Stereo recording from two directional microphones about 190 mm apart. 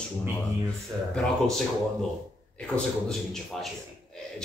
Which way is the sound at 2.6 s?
5° left (ahead or behind).